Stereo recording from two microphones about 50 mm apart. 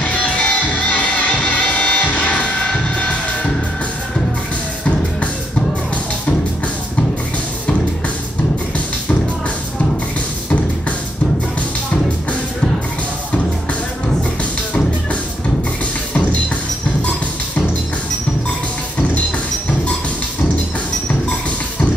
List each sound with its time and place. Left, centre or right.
0.0 s music: left